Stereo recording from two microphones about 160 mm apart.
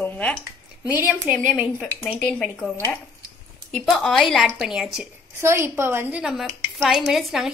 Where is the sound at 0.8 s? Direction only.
10° right (ahead or behind).